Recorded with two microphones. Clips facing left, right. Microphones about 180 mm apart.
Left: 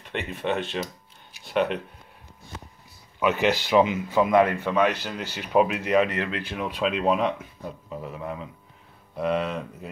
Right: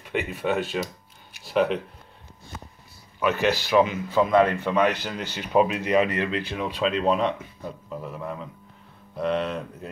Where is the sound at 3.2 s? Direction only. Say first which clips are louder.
Even; 20° left (ahead or behind).